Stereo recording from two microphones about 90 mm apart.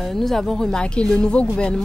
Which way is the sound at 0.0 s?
5° left (ahead or behind).